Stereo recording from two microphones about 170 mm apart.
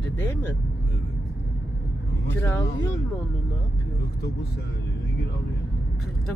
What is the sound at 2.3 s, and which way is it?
Speech, 10° left (ahead or behind).